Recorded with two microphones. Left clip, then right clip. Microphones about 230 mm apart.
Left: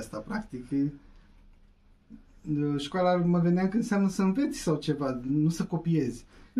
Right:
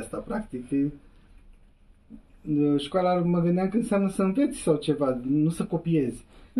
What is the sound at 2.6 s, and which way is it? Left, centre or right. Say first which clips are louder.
Speech: right 3 dB; left.